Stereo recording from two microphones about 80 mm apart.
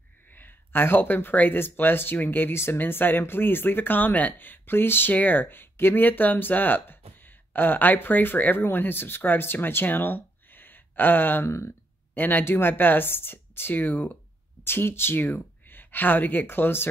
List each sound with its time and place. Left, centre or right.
0.3 s speech: left
12.2 s speech: left